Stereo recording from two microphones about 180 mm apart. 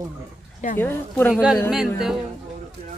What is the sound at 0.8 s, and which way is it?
Speech, 10° left (ahead or behind).